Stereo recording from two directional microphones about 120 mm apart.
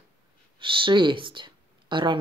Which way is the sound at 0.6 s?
45° right (ahead or behind).